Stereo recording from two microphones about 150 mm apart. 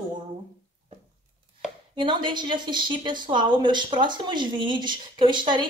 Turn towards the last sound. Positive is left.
turn(degrees=-30)  # may be behind; listen again after turning